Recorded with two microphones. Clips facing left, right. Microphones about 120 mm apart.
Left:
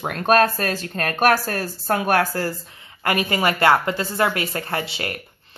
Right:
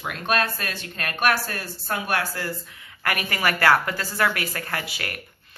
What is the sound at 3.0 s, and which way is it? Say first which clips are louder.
A woman's voice: left 5 dB; 25° left (ahead or behind).